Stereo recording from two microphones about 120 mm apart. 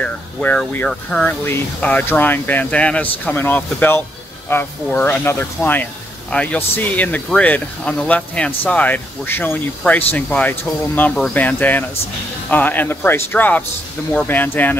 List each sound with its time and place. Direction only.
0.0 s speech: 10° left (ahead or behind)